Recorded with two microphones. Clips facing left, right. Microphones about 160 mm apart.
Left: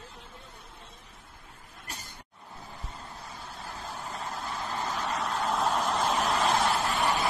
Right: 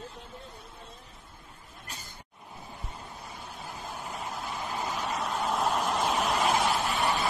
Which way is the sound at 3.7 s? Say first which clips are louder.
Even; 10° right (ahead or behind).